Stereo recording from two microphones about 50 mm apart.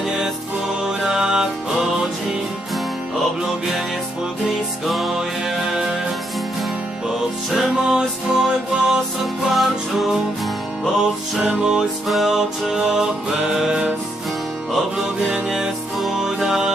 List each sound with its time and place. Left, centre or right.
0.8 s music: centre
4.5 s music: centre
5.6 s music: centre
7.1 s music: centre
9.5 s music: centre
11.0 s music: centre
12.1 s music: centre
15.1 s music: centre